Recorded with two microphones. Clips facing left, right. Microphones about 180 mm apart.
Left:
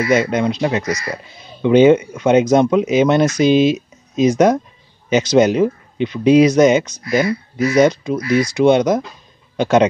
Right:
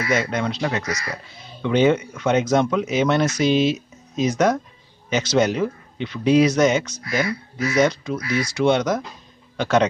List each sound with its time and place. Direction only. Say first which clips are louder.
0.1 s a man's voice: left 6 dB; 15° left (ahead or behind)